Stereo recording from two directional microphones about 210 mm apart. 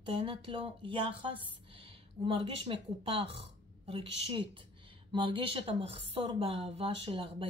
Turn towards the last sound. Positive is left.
turn(degrees=-25)  # may be behind; listen again after turning